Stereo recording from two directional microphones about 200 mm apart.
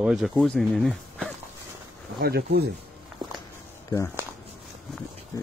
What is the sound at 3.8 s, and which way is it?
Speech, 15° left (ahead or behind).